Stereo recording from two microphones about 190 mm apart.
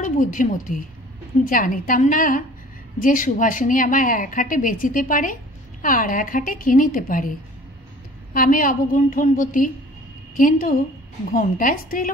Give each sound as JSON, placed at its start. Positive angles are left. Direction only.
{"t": 0.0, "sound": "a woman's voice", "side_deg": 45}
{"t": 8.3, "sound": "a woman's voice", "side_deg": 45}